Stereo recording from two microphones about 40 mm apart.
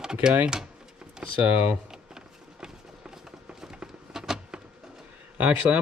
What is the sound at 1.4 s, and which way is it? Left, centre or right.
Speech, right.